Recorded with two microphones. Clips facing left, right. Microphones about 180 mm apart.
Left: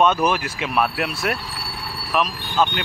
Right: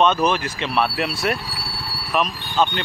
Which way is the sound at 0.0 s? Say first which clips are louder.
Even; 10° left (ahead or behind).